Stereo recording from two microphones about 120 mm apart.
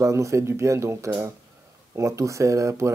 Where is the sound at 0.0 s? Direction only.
25° right (ahead or behind).